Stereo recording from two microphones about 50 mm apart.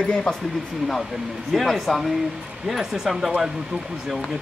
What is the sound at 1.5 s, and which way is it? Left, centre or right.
Speech, centre.